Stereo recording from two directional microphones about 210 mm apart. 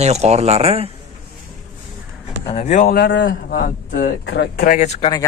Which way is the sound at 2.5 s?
35° left (ahead or behind).